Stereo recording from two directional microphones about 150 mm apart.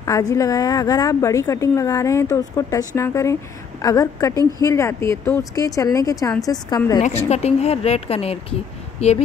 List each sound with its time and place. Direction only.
0.0 s a woman's voice: 20° left (ahead or behind)
7.0 s speech: 50° left (ahead or behind)